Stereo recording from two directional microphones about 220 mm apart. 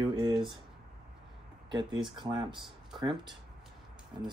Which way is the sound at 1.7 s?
20° right (ahead or behind).